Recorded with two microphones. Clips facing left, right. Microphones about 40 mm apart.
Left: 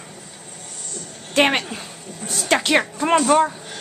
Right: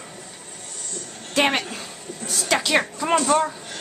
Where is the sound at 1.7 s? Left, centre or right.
Centre.